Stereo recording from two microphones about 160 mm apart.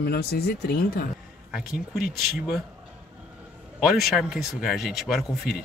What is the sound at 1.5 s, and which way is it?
Speech, centre (ahead or behind).